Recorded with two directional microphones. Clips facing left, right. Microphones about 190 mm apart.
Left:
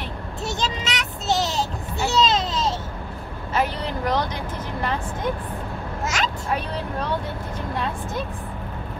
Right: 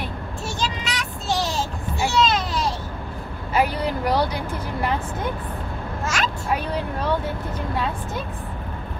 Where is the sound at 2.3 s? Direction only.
20° left (ahead or behind).